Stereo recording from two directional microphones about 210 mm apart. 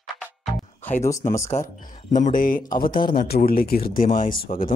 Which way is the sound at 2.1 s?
40° left (ahead or behind).